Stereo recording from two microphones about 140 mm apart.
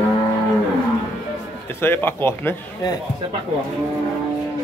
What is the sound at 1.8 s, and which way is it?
Speech, 15° left (ahead or behind).